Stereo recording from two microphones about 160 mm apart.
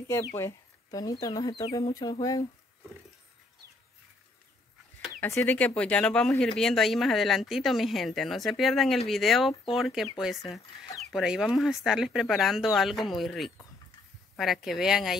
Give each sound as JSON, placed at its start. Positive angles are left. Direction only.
{"t": 0.1, "sound": "speech", "side_deg": 20}
{"t": 5.2, "sound": "speech", "side_deg": 15}